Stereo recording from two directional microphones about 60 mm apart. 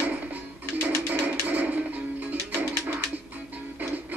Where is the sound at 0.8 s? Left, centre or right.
Right.